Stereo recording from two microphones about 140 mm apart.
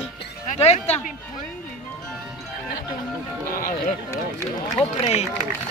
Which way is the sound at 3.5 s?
90° left.